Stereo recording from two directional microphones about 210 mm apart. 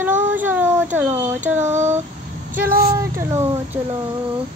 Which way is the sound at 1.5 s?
35° right (ahead or behind).